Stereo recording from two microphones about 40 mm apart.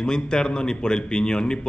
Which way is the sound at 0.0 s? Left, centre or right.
Centre.